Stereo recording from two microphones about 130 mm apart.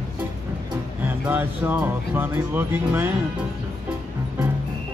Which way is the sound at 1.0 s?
15° right (ahead or behind).